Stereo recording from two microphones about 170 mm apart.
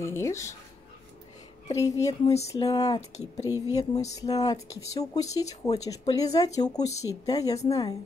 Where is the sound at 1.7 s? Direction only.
20° left (ahead or behind).